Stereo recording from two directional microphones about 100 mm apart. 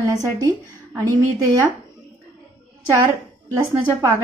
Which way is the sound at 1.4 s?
40° right (ahead or behind).